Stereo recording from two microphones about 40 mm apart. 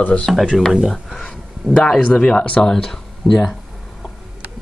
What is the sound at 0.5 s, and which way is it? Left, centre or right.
Speech, centre.